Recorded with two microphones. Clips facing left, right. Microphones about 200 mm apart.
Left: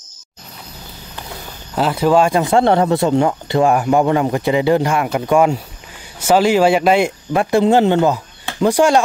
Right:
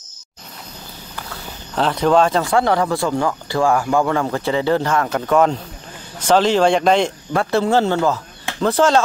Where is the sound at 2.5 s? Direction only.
25° left (ahead or behind).